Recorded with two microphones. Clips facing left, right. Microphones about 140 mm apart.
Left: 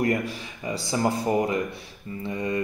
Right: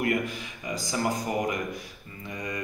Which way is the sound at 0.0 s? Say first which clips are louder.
Left 3 dB; 35° left (ahead or behind).